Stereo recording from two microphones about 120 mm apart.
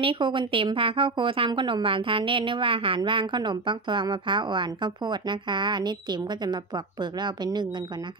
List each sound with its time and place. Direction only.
0.0 s a woman's voice: 45° right (ahead or behind)